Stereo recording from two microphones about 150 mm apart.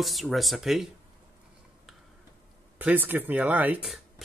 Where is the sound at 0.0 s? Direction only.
Centre (ahead or behind).